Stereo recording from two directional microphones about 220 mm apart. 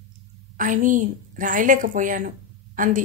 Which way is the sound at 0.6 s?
35° right (ahead or behind).